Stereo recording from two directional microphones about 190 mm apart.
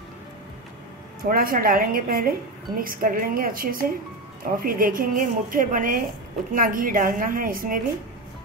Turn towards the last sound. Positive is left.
turn(degrees=-50)  # may be behind; listen again after turning